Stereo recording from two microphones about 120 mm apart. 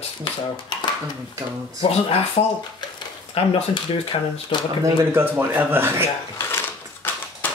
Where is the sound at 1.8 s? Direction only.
55° left (ahead or behind).